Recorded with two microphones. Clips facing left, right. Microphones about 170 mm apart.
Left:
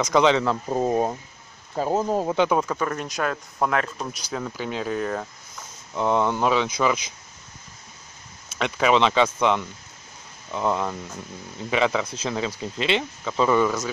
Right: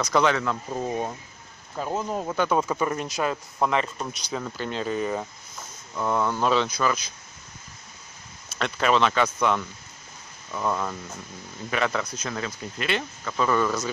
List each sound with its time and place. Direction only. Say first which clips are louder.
0.0 s speech: left 3 dB; 20° left (ahead or behind)
0.4 s speech: left 5 dB; 35° left (ahead or behind)
2.7 s speech: even; 10° right (ahead or behind)
5.9 s speech: left 3 dB; 20° left (ahead or behind)
8.5 s a sound: left 2 dB; 15° left (ahead or behind)
8.9 s speech: left 3 dB; 20° left (ahead or behind)
12.1 s speech: left 4 dB; 25° left (ahead or behind)